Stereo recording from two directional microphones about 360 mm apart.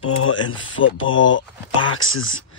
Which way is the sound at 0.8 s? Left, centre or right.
Left.